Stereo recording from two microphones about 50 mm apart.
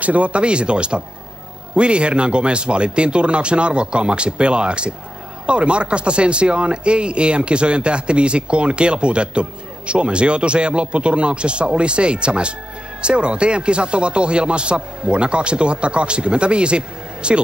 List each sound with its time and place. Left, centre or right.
0.0 s speech: right